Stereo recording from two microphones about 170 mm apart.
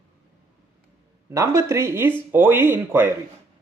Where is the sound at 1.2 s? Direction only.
15° right (ahead or behind).